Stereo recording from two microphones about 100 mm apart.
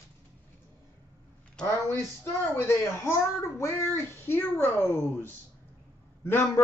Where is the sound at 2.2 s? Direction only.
30° left (ahead or behind).